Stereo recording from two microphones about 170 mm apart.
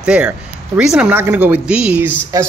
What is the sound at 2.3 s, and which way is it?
Speech, 20° right (ahead or behind).